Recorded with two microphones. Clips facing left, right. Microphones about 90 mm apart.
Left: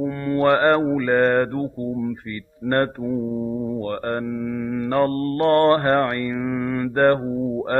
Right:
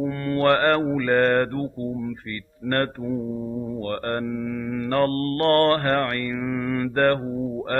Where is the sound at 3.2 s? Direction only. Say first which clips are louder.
Left 4 dB; 20° left (ahead or behind).